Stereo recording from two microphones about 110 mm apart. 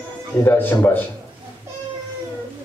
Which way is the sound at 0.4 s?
20° left (ahead or behind).